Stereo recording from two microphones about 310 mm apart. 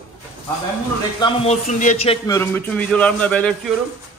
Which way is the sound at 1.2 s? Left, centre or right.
Centre.